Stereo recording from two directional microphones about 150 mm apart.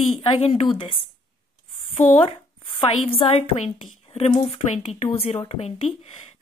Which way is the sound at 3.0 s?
40° left (ahead or behind).